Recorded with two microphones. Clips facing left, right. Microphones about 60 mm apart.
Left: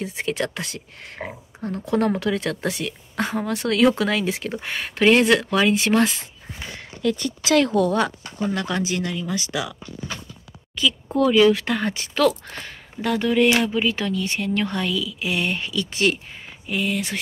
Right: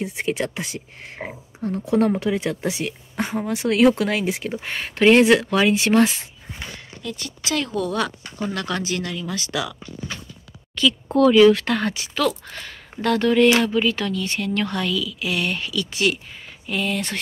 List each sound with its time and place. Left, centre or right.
0.0 s speech: centre
0.7 s speech: right
4.5 s speech: centre
7.0 s a woman's voice: left
8.4 s speech: centre
11.9 s speech: left
13.0 s speech: centre; by 16.2 s left
16.6 s speech: centre